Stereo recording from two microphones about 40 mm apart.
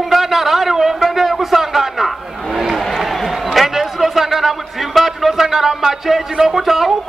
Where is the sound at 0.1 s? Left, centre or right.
Centre.